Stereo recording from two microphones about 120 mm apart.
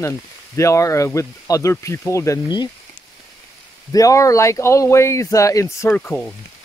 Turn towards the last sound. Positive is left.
turn(degrees=10)  # may be behind; listen again after turning